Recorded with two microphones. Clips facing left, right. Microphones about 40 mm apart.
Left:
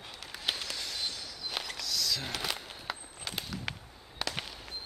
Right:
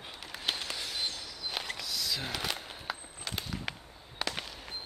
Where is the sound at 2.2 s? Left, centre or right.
Centre.